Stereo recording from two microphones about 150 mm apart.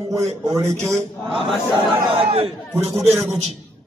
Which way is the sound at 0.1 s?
20° right (ahead or behind).